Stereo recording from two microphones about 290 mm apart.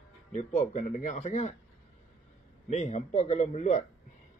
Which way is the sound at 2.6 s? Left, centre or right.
Left.